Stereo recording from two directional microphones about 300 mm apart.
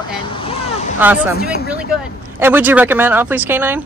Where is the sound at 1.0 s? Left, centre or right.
Centre.